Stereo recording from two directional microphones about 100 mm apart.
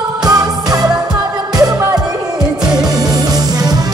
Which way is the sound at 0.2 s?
40° right (ahead or behind).